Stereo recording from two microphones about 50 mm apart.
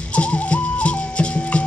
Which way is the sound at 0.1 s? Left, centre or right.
Left.